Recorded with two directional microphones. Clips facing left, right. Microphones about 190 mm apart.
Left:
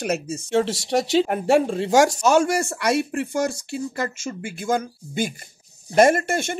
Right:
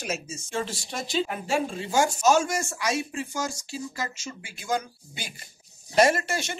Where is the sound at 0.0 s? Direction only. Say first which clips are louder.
Left 8 dB; 60° left (ahead or behind).